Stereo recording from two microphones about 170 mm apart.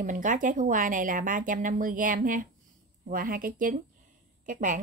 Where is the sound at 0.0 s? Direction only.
50° right (ahead or behind).